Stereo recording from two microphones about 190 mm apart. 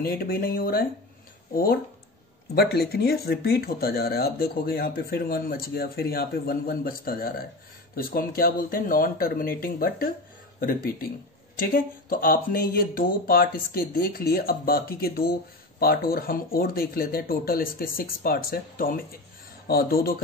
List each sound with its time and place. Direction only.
0.0 s speech: 50° left (ahead or behind)